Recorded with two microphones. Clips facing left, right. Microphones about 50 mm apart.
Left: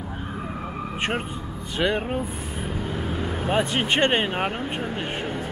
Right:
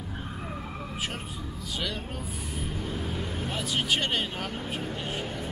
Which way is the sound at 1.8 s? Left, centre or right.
Left.